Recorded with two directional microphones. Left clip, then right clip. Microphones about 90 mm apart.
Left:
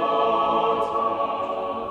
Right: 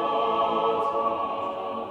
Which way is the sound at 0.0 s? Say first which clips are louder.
Left 3 dB; 20° left (ahead or behind).